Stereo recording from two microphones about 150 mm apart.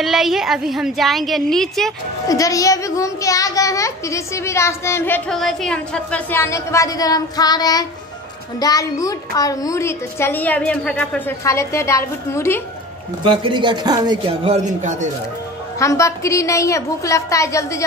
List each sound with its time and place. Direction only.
0.0 s a woman's voice: centre (ahead or behind)
2.2 s a child's voice: 20° left (ahead or behind)
5.3 s a woman's voice: 5° left (ahead or behind)
6.3 s a child's voice: 20° left (ahead or behind)
13.2 s speech: 35° right (ahead or behind)
14.4 s a man's voice: 50° right (ahead or behind)
15.8 s a child's voice: 20° left (ahead or behind)